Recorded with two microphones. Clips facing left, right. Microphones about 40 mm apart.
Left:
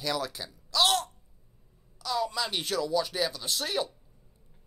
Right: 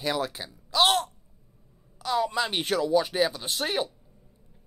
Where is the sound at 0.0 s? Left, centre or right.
Right.